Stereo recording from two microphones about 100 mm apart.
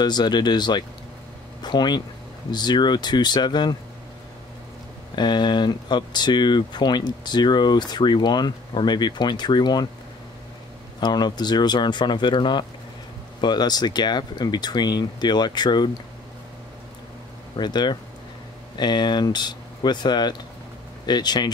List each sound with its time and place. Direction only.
0.0 s speech: 45° left (ahead or behind)
5.1 s speech: 45° left (ahead or behind)
11.0 s speech: 45° left (ahead or behind)
17.6 s speech: 45° left (ahead or behind)